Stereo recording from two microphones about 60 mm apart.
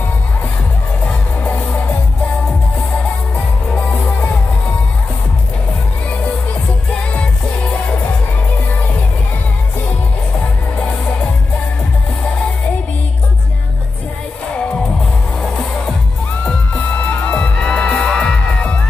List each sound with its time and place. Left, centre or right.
1.0 s music: left
3.9 s music: left
15.4 s music: centre
17.1 s music: left